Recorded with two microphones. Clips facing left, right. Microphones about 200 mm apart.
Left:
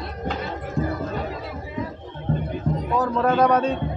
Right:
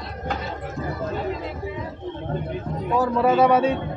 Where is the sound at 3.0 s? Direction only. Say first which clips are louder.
Right 2 dB; 10° right (ahead or behind).